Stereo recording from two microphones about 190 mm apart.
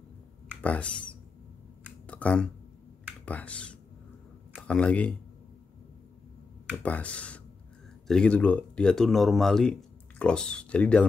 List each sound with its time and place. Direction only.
0.6 s speech: 5° left (ahead or behind)
2.0 s speech: 5° left (ahead or behind)
6.8 s speech: 5° left (ahead or behind)